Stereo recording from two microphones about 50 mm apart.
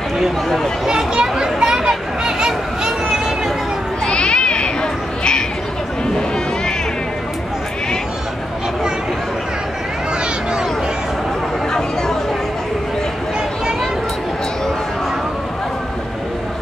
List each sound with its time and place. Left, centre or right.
0.2 s speech: centre
0.8 s children playing: centre
4.0 s a sound: centre